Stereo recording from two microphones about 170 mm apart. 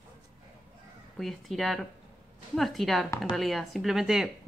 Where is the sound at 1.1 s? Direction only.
Centre (ahead or behind).